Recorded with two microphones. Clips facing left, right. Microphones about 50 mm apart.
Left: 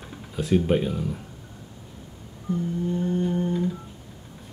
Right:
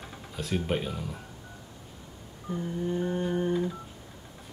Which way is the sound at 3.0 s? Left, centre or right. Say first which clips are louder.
Left 4 dB; right.